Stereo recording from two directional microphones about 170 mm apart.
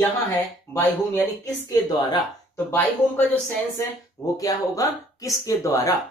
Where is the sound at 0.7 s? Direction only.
15° left (ahead or behind).